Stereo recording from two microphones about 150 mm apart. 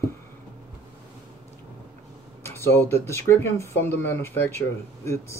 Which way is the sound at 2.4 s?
15° left (ahead or behind).